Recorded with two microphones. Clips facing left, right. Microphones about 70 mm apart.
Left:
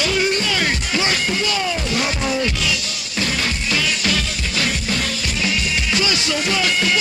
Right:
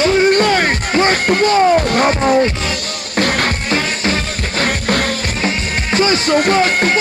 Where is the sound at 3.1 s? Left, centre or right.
Right.